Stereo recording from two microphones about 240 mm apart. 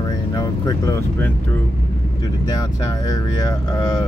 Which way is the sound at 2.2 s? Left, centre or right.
Centre.